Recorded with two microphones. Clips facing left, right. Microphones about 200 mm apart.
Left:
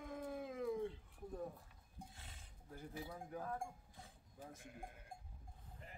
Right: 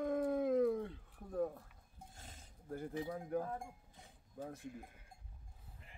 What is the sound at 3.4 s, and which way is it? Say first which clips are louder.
Sheep: right 2 dB; 25° right (ahead or behind).